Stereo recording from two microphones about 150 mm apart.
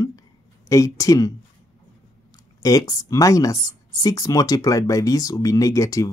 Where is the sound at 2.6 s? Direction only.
25° left (ahead or behind).